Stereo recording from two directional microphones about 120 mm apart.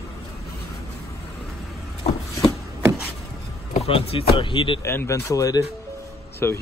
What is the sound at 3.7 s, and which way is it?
Speech, 60° left (ahead or behind).